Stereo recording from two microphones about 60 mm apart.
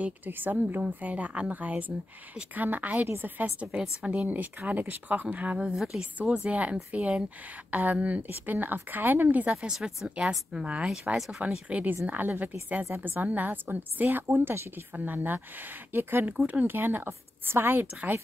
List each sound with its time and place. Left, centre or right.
0.0 s a woman's voice: right
3.1 s a woman's voice: right
3.7 s speech: centre
4.1 s a woman's voice: right
11.1 s speech: centre
11.4 s a woman's voice: right
16.3 s a woman's voice: right